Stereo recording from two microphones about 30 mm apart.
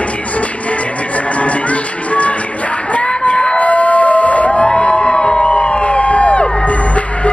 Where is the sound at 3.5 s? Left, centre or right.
Left.